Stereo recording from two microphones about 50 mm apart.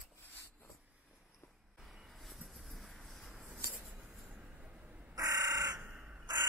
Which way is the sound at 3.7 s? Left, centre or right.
Right.